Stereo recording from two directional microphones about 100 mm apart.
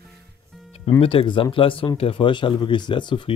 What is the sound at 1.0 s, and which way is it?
Speech, 65° left (ahead or behind).